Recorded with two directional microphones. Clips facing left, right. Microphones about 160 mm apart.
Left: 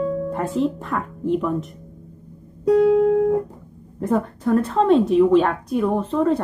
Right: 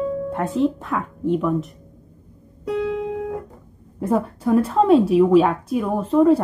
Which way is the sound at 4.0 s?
5° right (ahead or behind).